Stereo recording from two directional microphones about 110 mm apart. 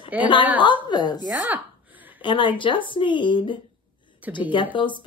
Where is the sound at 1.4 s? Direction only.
15° right (ahead or behind).